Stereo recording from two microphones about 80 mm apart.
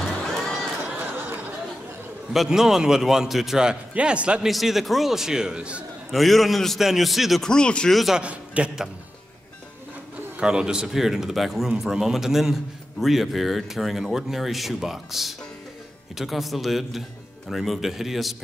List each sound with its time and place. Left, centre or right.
0.5 s a sound: centre
0.9 s a sound: right
2.3 s a man's voice: centre
4.5 s speech: centre
6.1 s speech: centre
7.5 s speech: centre
8.2 s a man's voice: centre
10.4 s speech: centre